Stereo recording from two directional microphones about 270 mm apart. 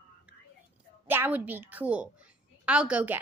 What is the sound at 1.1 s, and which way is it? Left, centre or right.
A woman's voice, centre.